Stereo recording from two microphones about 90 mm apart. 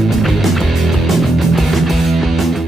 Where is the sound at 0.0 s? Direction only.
Centre (ahead or behind).